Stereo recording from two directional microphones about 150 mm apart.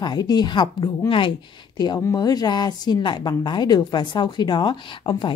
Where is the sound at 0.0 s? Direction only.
30° left (ahead or behind).